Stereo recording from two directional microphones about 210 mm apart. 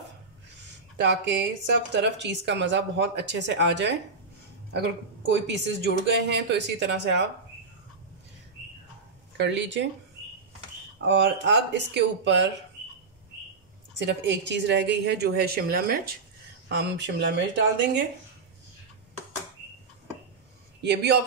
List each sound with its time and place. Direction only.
1.0 s a woman's voice: 55° right (ahead or behind)
9.4 s a woman's voice: 60° right (ahead or behind)
11.1 s a woman's voice: 60° right (ahead or behind)
13.9 s a woman's voice: 55° right (ahead or behind)
20.8 s a woman's voice: 50° right (ahead or behind)